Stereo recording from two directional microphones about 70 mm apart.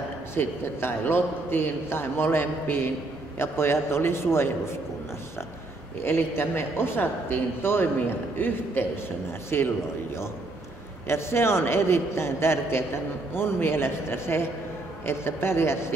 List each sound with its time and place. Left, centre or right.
0.3 s a man's voice: left
6.0 s a man's voice: left
11.1 s a man's voice: left